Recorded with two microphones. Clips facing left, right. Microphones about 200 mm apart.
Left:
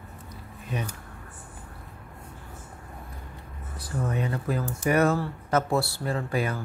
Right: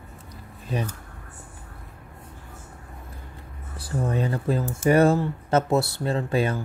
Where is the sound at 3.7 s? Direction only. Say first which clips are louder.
Right 3 dB; 30° right (ahead or behind).